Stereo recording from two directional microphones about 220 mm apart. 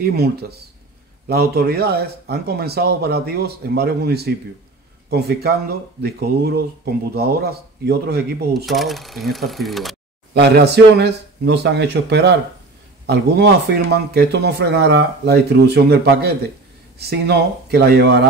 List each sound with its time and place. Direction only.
0.0 s speech: 45° right (ahead or behind)
8.6 s speech: centre (ahead or behind)
10.3 s speech: 50° right (ahead or behind)